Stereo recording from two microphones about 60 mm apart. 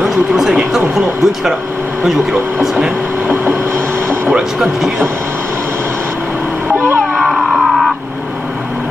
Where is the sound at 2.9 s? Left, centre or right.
Right.